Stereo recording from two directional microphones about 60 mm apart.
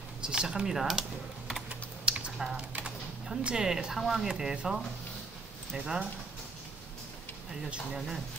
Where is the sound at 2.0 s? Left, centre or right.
Centre.